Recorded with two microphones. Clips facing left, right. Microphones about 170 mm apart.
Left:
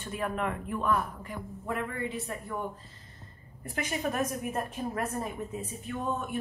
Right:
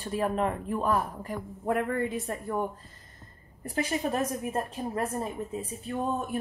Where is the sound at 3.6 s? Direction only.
30° right (ahead or behind).